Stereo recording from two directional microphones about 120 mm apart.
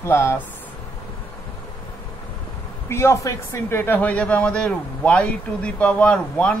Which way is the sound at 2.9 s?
25° left (ahead or behind).